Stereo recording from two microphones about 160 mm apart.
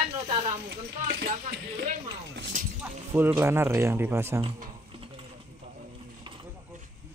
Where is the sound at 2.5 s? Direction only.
55° right (ahead or behind).